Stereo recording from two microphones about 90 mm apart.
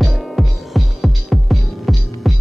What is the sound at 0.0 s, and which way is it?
Music, centre (ahead or behind).